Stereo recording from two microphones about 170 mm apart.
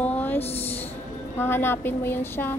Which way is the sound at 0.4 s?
35° left (ahead or behind).